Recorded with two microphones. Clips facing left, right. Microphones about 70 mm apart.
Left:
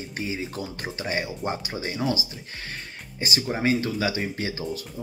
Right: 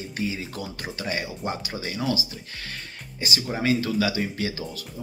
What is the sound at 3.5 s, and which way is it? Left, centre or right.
Speech, left.